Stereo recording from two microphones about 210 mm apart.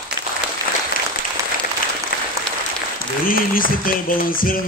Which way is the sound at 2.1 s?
50° left (ahead or behind).